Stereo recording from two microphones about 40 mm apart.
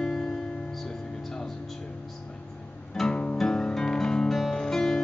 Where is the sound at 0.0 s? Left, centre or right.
Centre.